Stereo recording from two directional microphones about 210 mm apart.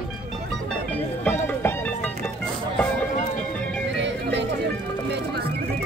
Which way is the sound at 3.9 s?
55° right (ahead or behind).